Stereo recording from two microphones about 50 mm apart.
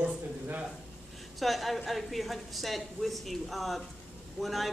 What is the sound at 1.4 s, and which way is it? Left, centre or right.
A woman's voice, centre.